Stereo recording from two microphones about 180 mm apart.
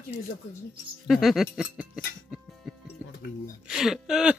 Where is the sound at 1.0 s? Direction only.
Centre (ahead or behind).